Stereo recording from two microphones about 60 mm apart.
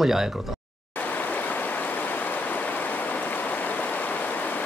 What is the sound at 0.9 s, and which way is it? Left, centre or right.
Stream, left.